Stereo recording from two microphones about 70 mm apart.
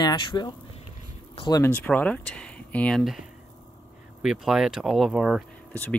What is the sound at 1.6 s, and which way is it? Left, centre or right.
Speech, left.